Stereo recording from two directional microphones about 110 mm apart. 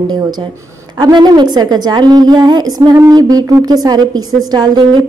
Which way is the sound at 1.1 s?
40° right (ahead or behind).